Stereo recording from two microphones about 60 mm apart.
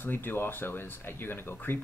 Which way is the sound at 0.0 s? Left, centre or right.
Left.